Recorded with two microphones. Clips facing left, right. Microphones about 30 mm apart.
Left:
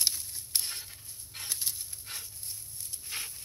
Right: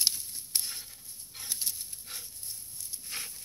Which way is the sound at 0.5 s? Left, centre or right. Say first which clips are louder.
Left 1 dB; left.